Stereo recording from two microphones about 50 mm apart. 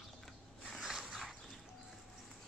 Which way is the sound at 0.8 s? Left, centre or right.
Centre.